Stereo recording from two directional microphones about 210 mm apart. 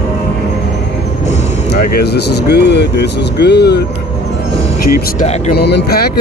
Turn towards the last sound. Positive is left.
turn(degrees=50)  # may be behind; listen again after turning